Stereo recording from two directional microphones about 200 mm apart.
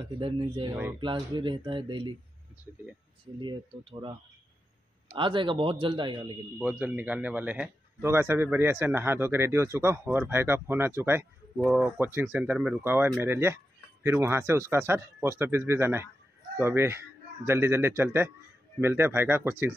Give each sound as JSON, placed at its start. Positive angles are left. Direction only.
{"t": 0.2, "sound": "a man's voice", "side_deg": -25}
{"t": 3.3, "sound": "a man's voice", "side_deg": -25}
{"t": 5.1, "sound": "a man's voice", "side_deg": -25}
{"t": 6.6, "sound": "speech", "side_deg": -10}